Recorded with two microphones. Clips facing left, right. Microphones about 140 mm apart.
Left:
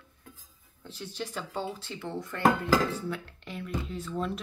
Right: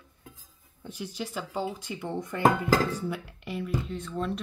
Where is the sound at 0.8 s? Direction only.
10° right (ahead or behind).